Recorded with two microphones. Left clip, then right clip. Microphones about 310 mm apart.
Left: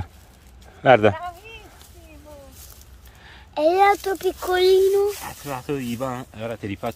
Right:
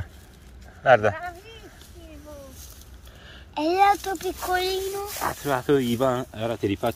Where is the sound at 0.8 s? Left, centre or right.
Left.